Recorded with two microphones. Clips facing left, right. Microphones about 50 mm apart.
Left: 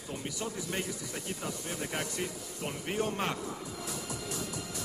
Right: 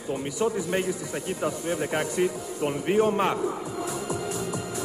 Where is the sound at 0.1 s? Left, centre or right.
Centre.